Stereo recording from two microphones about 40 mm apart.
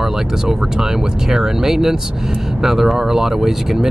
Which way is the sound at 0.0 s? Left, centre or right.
Centre.